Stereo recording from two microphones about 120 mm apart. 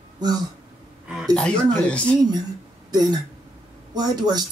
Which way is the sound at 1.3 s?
10° left (ahead or behind).